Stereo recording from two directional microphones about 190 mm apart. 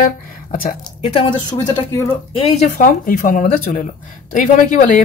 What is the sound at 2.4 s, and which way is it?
A woman's voice, 40° left (ahead or behind).